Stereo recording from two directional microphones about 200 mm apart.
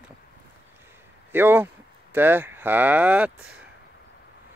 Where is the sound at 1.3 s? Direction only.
10° right (ahead or behind).